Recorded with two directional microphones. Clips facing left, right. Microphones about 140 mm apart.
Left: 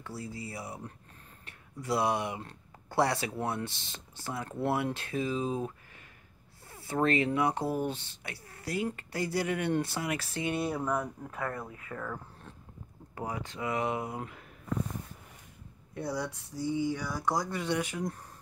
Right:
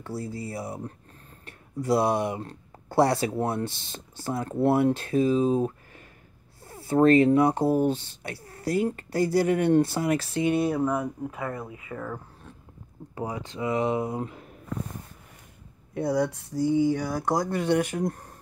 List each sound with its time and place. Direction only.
0.0 s speech: 35° right (ahead or behind)
6.7 s speech: 35° right (ahead or behind); by 10.7 s 20° right (ahead or behind)
10.7 s speech: 10° right (ahead or behind)
13.1 s speech: 20° right (ahead or behind)
15.9 s speech: 55° right (ahead or behind)